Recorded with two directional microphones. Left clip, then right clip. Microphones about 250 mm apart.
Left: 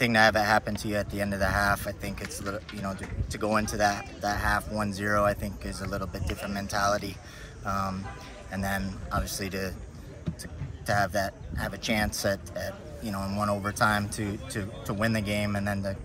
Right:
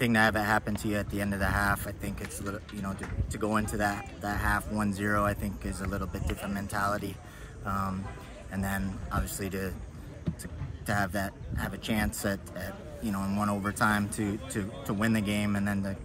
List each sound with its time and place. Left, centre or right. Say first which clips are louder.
0.0 s speech: left 4 dB; centre
10.3 s a sound: even; right
10.9 s speech: left 4 dB; centre